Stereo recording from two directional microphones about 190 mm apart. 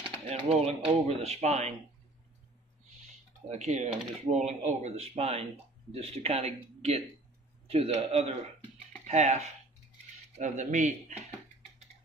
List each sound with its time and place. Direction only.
0.0 s speech: 35° right (ahead or behind)
3.5 s speech: 35° right (ahead or behind)